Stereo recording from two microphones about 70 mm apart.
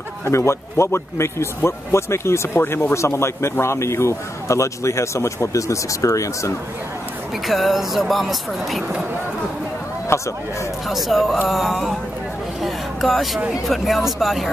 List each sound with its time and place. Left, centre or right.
0.2 s a man's voice: left
7.4 s speech: centre
10.0 s speech: left
10.9 s speech: centre
12.6 s a sound: centre
13.5 s speech: centre